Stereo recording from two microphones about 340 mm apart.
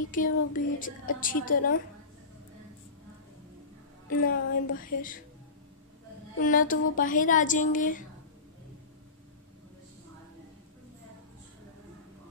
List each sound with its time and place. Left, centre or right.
0.1 s a woman's voice: left
4.2 s a woman's voice: left
6.4 s a woman's voice: left